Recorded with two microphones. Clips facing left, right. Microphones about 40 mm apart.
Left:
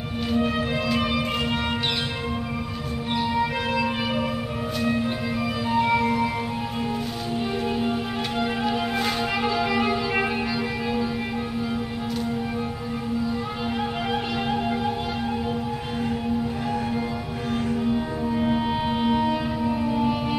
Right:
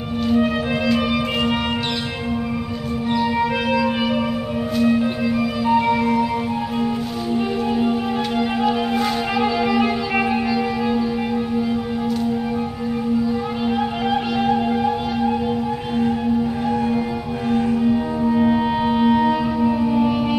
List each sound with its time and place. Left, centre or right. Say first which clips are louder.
0.4 s music: right 5 dB; centre
4.7 s music: right 7 dB; centre
8.4 s music: right 4 dB; centre
17.9 s music: right 6 dB; right
18.4 s music: right 4 dB; centre
19.2 s music: right 6 dB; centre